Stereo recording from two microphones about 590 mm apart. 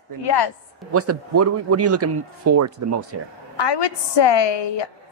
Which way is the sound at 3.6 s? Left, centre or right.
Left.